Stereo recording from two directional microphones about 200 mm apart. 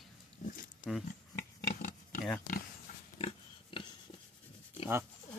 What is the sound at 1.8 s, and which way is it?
Pig, 45° left (ahead or behind).